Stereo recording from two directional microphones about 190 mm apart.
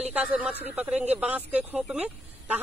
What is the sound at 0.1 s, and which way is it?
Speech, 5° right (ahead or behind).